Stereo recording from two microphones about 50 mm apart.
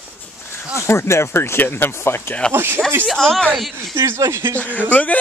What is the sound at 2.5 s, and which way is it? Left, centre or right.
Speech, right.